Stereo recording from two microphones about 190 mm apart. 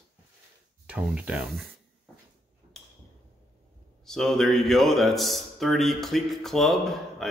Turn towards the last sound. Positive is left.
turn(degrees=0)  # may be behind; listen again after turning